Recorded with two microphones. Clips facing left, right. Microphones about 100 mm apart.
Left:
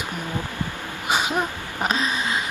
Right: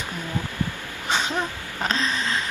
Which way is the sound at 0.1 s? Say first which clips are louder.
Left 1 dB; 20° left (ahead or behind).